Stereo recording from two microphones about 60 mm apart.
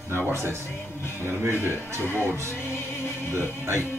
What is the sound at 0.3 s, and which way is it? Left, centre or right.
Speech, right.